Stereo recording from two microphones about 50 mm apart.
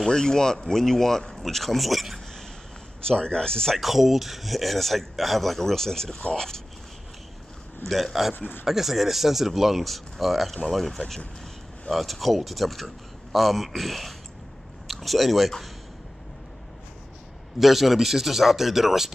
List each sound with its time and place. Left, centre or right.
0.1 s speech: centre
3.1 s speech: centre
3.7 s speech: centre
7.8 s speech: centre
8.4 s speech: left
8.6 s speech: centre
17.6 s speech: centre